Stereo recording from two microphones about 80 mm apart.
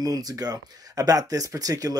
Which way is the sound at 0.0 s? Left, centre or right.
Right.